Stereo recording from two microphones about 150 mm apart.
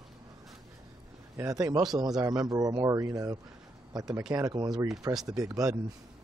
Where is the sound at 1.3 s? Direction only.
25° right (ahead or behind).